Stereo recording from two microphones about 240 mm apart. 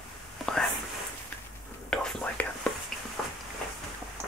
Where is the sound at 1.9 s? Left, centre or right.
Centre.